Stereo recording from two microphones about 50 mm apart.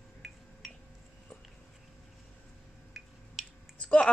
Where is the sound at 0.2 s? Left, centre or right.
Centre.